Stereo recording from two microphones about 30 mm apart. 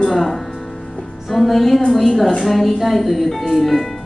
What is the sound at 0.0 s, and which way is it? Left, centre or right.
Music, centre.